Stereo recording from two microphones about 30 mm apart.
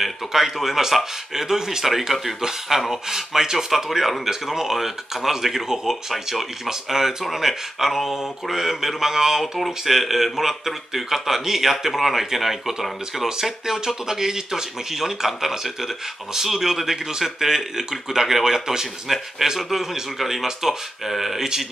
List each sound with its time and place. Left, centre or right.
0.0 s speech: centre
19.0 s speech: centre
21.4 s speech: centre